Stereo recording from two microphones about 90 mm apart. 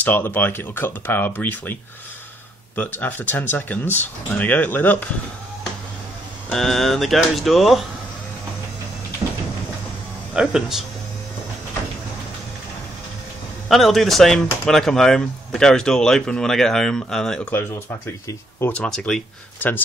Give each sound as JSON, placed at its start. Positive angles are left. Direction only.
{"t": 0.0, "sound": "speech", "side_deg": 20}
{"t": 6.5, "sound": "speech", "side_deg": 5}
{"t": 10.3, "sound": "speech", "side_deg": -5}
{"t": 13.7, "sound": "speech", "side_deg": 0}
{"t": 17.5, "sound": "speech", "side_deg": 25}
{"t": 18.7, "sound": "speech", "side_deg": 10}